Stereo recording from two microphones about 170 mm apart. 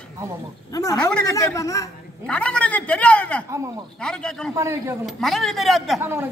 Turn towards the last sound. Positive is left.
turn(degrees=-15)  # may be behind; listen again after turning